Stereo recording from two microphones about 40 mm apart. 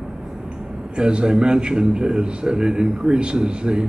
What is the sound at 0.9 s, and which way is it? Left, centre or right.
A man's voice, right.